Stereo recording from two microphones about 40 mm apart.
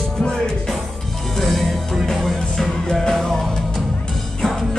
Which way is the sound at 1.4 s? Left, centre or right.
Centre.